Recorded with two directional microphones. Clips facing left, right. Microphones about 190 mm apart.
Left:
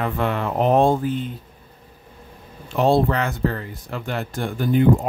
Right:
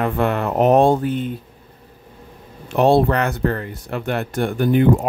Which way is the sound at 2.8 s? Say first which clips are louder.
Right 3 dB; 65° right (ahead or behind).